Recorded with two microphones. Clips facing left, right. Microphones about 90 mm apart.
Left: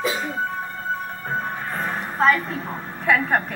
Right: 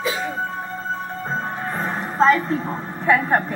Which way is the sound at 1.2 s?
20° right (ahead or behind).